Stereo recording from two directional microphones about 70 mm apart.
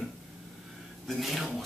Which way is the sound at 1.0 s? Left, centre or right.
Centre.